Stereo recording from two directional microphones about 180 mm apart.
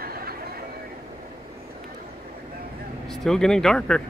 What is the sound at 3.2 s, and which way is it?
Speech, 5° left (ahead or behind).